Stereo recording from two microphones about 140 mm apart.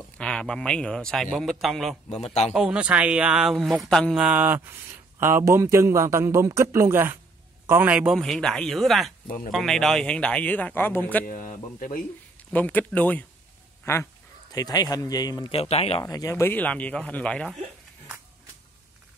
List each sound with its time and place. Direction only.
0.2 s a man's voice: 5° left (ahead or behind)
2.0 s speech: 50° left (ahead or behind)
2.5 s speech: 5° right (ahead or behind)
8.2 s a man's voice: 5° left (ahead or behind)
11.2 s speech: 70° left (ahead or behind)
12.4 s speech: 10° left (ahead or behind)
14.5 s speech: 25° left (ahead or behind)
15.5 s speech: 45° left (ahead or behind)
16.0 s speech: 25° left (ahead or behind); by 17.5 s 10° left (ahead or behind)